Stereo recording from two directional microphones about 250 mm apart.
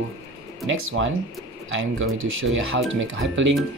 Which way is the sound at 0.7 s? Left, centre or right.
Right.